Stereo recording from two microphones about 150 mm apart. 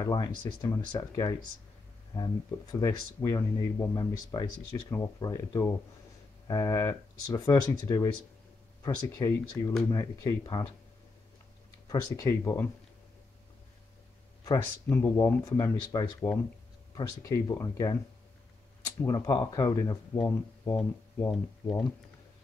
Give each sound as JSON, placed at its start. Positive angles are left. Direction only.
{"t": 0.0, "sound": "speech", "side_deg": 30}
{"t": 11.9, "sound": "speech", "side_deg": 25}
{"t": 14.9, "sound": "speech", "side_deg": 15}
{"t": 21.3, "sound": "speech", "side_deg": 5}